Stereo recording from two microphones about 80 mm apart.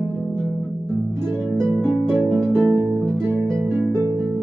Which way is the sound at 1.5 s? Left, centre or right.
Right.